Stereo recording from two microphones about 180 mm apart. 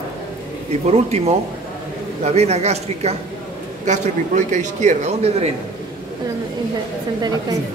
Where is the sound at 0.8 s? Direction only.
35° right (ahead or behind).